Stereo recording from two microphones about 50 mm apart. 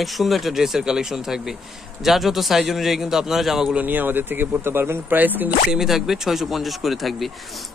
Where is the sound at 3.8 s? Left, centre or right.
Right.